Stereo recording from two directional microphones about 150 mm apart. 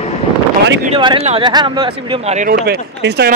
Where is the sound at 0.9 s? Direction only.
35° right (ahead or behind).